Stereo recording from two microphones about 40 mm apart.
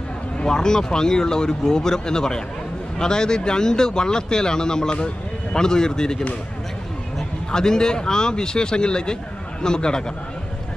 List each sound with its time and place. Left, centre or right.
0.4 s speech: centre